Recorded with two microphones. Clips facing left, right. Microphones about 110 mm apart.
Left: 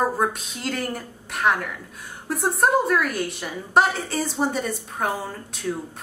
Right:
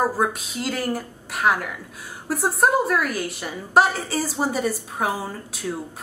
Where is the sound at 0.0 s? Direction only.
5° right (ahead or behind).